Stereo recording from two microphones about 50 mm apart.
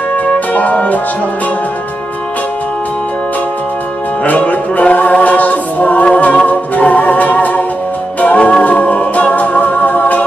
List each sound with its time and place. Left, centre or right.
0.1 s music: left
4.2 s music: left